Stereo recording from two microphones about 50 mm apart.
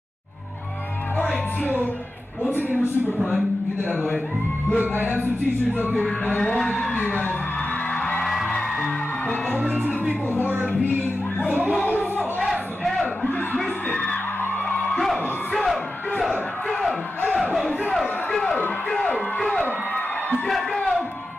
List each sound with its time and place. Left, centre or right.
1.6 s speech: left
4.7 s speech: right
5.9 s music: centre
8.5 s music: centre
9.6 s speech: right
11.4 s speech: right
13.8 s music: left
15.0 s music: centre
17.9 s a sound: centre
18.9 s music: centre
20.4 s a sound: centre